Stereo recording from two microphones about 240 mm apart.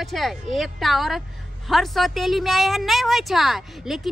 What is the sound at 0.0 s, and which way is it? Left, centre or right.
A woman's voice, centre.